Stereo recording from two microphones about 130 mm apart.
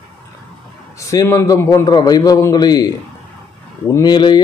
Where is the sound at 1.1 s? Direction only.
25° left (ahead or behind).